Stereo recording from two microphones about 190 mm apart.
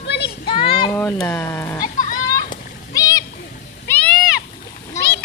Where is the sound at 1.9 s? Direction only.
45° left (ahead or behind).